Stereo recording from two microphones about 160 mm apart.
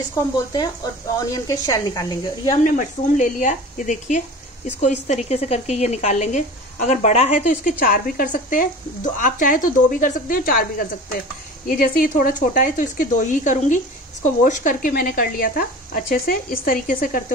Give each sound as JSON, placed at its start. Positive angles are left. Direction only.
{"t": 1.1, "sound": "speech", "side_deg": 20}
{"t": 2.5, "sound": "speech", "side_deg": 55}